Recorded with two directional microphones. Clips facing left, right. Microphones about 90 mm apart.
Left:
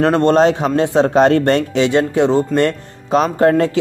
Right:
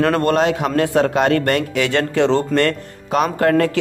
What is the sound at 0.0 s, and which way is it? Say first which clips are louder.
Speech: left 4 dB; 30° left (ahead or behind).